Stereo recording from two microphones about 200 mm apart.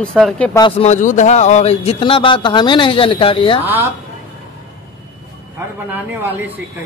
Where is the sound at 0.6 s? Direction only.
35° left (ahead or behind).